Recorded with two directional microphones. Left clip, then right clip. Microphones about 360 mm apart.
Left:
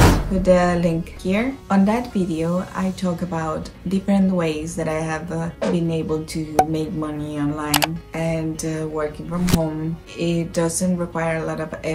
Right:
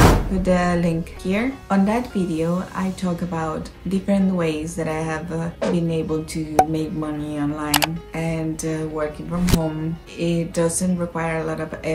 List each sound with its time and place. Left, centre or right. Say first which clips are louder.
0.4 s speech: left 4 dB; centre